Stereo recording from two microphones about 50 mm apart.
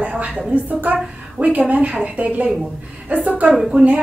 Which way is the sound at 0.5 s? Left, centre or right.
Right.